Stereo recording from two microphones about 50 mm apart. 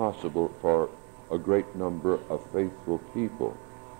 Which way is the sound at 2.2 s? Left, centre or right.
Centre.